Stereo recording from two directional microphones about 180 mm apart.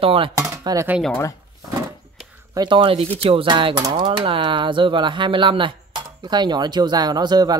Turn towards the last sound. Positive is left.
turn(degrees=-25)  # may be behind; listen again after turning